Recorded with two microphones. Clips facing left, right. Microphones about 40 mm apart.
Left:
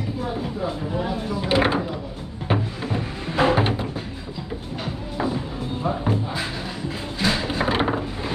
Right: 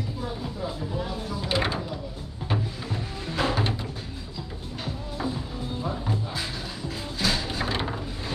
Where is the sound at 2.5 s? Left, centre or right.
Left.